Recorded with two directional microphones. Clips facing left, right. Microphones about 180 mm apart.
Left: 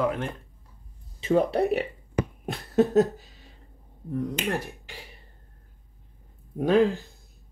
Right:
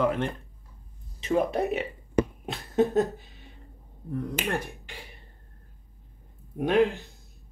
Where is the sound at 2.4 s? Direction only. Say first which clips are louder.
Left 2 dB; 70° left (ahead or behind).